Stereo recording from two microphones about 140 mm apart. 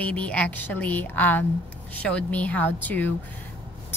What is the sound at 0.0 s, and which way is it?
A woman's voice, 10° left (ahead or behind).